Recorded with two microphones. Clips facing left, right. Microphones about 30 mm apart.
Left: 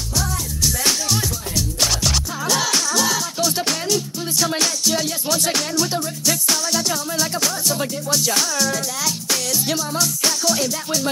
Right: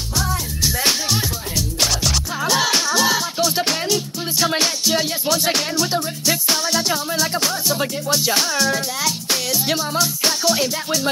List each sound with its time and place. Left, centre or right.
0.2 s music: right
1.8 s music: centre
2.4 s music: centre